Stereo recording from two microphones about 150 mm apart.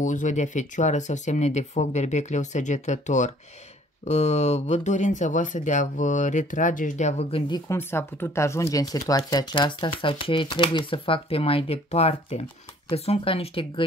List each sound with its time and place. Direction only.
0.0 s speech: 55° left (ahead or behind); by 7.7 s 30° left (ahead or behind)
7.7 s speech: 15° left (ahead or behind); by 13.8 s 35° left (ahead or behind)